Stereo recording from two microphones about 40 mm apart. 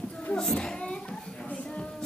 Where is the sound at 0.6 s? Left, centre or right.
Left.